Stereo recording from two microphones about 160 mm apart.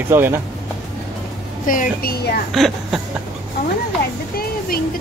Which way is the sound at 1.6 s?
55° left (ahead or behind).